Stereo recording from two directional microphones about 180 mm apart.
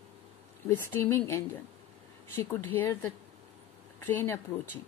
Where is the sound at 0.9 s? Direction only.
15° left (ahead or behind).